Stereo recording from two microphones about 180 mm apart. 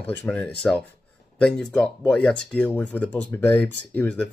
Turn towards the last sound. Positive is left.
turn(degrees=5)  # may be behind; listen again after turning